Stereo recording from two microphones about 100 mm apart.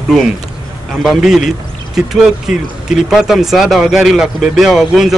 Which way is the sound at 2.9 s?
5° right (ahead or behind).